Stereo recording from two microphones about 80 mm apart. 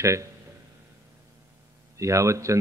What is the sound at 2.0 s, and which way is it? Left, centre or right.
Speech, right.